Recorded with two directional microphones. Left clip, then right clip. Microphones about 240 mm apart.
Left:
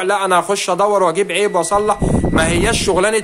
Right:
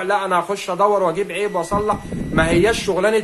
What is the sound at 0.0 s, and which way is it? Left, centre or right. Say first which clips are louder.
Speech: left 4 dB; left.